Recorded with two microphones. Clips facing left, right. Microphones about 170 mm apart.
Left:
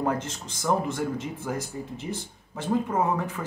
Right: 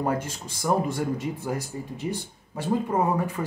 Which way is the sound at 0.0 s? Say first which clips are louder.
Right 1 dB; 10° right (ahead or behind).